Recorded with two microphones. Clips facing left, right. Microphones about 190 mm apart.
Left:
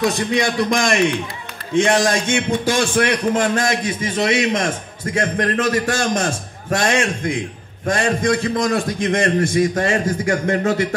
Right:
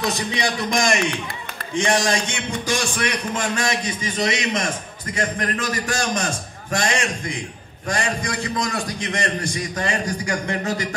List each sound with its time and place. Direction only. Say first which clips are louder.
0.0 s a man's voice: left 5 dB; 55° left (ahead or behind)